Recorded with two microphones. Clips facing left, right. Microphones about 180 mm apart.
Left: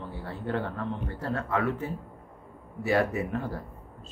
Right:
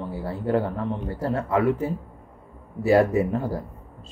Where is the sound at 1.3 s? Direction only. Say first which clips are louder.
Right 6 dB; 25° right (ahead or behind).